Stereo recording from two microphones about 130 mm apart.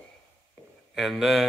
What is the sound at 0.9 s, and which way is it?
Speech, centre (ahead or behind).